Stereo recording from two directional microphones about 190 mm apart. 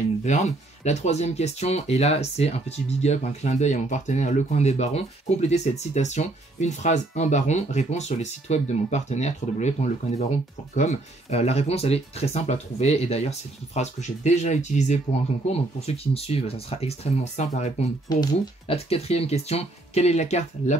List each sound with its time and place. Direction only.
0.2 s speech: 35° left (ahead or behind)
18.0 s speech: 25° left (ahead or behind)